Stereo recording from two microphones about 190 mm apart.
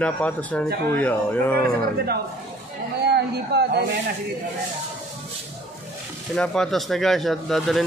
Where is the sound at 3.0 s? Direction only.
60° right (ahead or behind).